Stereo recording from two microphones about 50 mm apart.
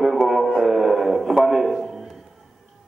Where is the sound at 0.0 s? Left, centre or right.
Centre.